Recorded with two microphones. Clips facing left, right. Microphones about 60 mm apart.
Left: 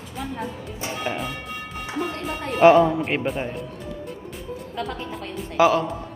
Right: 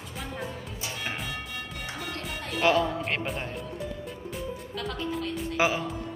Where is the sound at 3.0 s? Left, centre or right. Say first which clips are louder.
Left 6 dB; centre.